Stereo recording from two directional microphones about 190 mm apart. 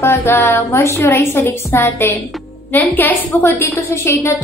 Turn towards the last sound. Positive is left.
turn(degrees=15)  # may be behind; listen again after turning